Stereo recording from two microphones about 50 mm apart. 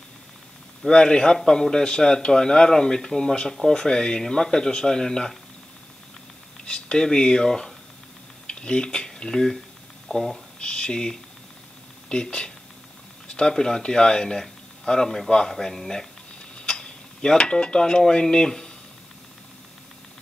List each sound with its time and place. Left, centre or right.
0.8 s speech: centre
6.6 s speech: centre
10.6 s speech: centre
16.5 s cutlery: centre